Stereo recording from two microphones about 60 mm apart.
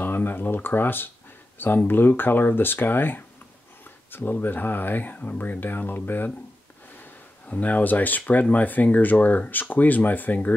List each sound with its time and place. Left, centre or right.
0.0 s speech: left
7.4 s speech: left